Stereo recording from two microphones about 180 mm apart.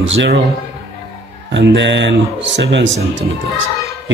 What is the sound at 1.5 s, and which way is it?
Speech, 85° right.